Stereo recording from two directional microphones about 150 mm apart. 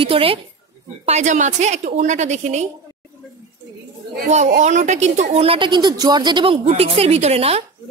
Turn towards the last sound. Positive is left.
turn(degrees=-40)  # may be behind; listen again after turning